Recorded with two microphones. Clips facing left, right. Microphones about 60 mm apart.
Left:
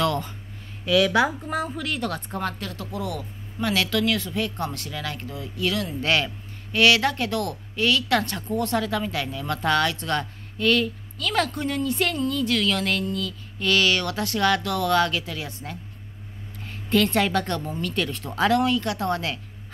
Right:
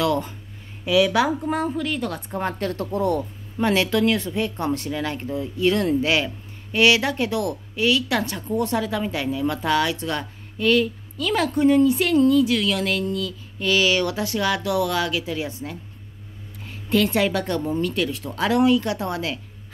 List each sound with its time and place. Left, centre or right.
0.8 s a woman's voice: centre
2.6 s speech: right
3.6 s speech: right
6.0 s a woman's voice: centre
18.5 s a woman's voice: centre
19.1 s a woman's voice: centre